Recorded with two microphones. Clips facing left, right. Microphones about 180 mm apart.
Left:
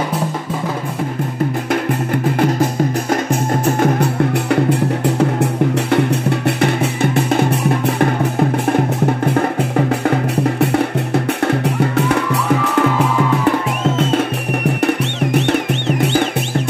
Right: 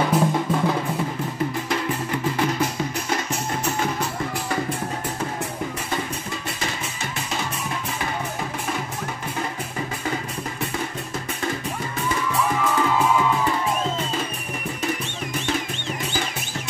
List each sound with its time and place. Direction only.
2.3 s music: 50° left (ahead or behind); by 12.2 s 70° left (ahead or behind)
13.5 s music: 65° left (ahead or behind)